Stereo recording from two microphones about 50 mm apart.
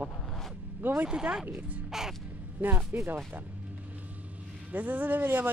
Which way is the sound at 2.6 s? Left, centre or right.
Right.